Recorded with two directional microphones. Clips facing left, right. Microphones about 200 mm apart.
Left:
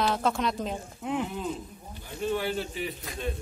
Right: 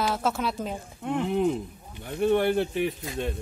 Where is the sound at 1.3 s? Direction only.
65° right (ahead or behind).